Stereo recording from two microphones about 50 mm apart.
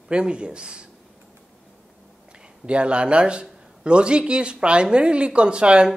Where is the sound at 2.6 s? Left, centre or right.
Right.